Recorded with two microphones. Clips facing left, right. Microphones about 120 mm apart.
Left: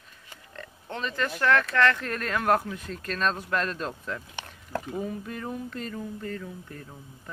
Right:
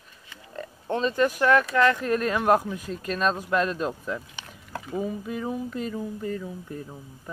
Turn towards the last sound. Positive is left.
turn(degrees=-15)  # may be behind; listen again after turning